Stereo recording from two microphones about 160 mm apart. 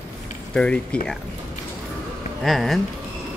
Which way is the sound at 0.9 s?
5° left (ahead or behind).